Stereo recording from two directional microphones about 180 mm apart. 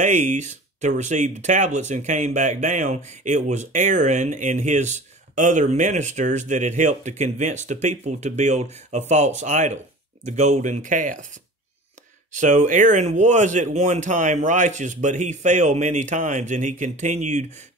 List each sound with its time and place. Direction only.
0.0 s speech: 40° right (ahead or behind)
12.3 s speech: 45° right (ahead or behind)